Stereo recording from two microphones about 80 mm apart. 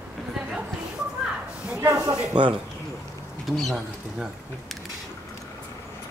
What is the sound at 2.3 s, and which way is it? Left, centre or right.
Speech, right.